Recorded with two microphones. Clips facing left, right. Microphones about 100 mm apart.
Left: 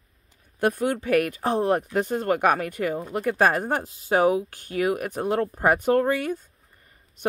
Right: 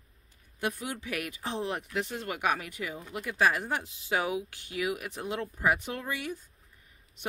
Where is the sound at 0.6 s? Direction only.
55° left (ahead or behind).